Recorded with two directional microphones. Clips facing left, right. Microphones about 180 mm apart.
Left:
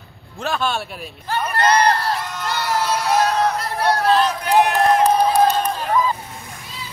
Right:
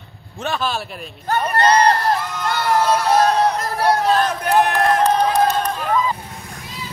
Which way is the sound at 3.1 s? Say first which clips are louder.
Even; 40° right (ahead or behind).